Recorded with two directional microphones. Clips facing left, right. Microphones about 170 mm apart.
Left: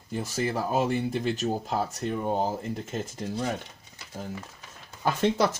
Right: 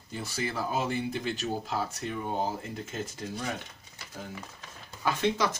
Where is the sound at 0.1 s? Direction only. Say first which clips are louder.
Left 5 dB; 45° left (ahead or behind).